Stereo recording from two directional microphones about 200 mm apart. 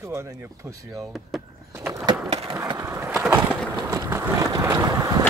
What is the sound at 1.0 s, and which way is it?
Speech, centre (ahead or behind).